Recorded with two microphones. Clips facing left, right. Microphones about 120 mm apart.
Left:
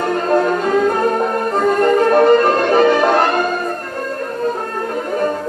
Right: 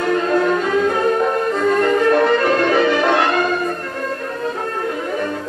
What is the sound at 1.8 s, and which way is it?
Music, 45° left (ahead or behind).